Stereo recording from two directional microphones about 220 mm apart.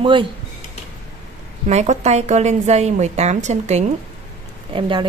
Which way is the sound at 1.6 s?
30° right (ahead or behind).